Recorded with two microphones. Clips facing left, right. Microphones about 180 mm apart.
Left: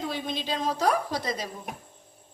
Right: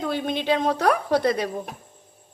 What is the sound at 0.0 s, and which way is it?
A woman's voice, 60° right (ahead or behind).